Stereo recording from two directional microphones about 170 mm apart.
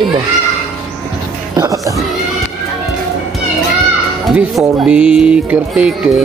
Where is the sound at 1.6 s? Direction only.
20° right (ahead or behind).